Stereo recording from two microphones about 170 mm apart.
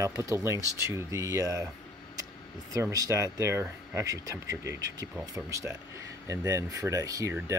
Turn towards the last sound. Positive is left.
turn(degrees=-20)  # may be behind; listen again after turning